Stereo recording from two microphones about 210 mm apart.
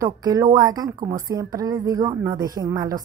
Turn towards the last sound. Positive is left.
turn(degrees=-15)  # may be behind; listen again after turning